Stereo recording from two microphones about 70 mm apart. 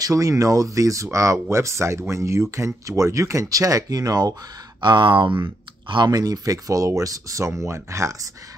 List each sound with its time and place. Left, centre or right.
0.0 s speech: right
4.8 s speech: right
5.9 s speech: right